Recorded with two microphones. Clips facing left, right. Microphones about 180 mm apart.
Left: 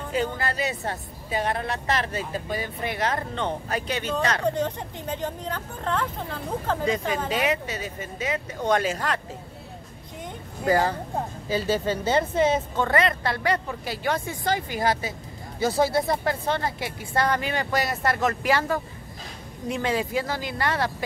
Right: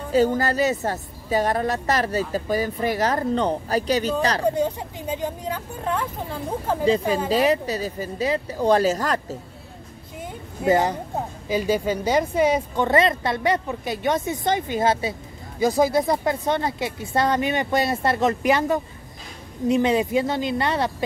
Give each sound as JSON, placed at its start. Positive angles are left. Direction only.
{"t": 0.1, "sound": "a woman's voice", "side_deg": -40}
{"t": 4.5, "sound": "speech", "side_deg": -10}
{"t": 6.8, "sound": "a woman's voice", "side_deg": -30}
{"t": 10.7, "sound": "a woman's voice", "side_deg": -20}